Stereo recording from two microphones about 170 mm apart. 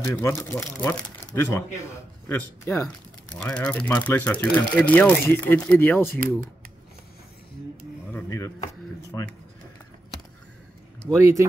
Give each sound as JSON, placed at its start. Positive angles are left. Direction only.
{"t": 0.0, "sound": "speech", "side_deg": 15}
{"t": 8.1, "sound": "speech", "side_deg": 15}
{"t": 11.1, "sound": "speech", "side_deg": -15}